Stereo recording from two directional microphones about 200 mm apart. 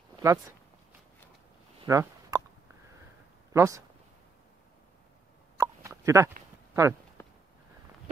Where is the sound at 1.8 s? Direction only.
15° right (ahead or behind).